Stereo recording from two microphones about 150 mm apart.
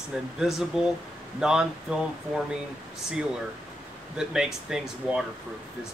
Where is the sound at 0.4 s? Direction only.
5° right (ahead or behind).